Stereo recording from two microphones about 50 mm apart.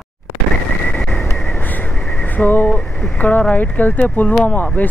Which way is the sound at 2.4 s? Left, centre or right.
Left.